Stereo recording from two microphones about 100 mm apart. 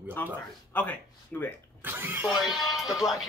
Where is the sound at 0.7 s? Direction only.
15° left (ahead or behind).